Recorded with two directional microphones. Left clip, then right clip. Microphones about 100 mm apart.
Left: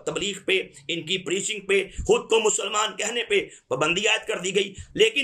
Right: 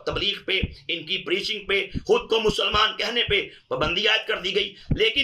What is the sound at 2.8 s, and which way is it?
Speech, 25° left (ahead or behind).